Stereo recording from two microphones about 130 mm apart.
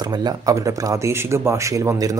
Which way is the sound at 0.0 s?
30° right (ahead or behind).